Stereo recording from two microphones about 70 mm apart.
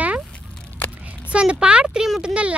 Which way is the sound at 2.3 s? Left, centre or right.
Centre.